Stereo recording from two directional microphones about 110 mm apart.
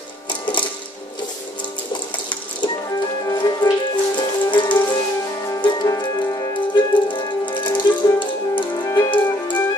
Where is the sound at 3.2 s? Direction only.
40° left (ahead or behind).